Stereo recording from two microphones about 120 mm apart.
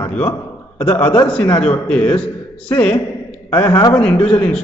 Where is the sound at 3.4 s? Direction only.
15° left (ahead or behind).